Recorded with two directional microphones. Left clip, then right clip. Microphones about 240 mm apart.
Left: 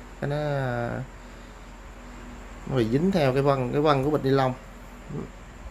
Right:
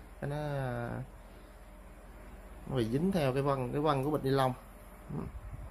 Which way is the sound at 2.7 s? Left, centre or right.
Centre.